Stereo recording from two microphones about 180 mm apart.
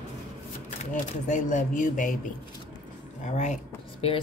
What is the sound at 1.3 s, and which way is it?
Speech, 45° left (ahead or behind).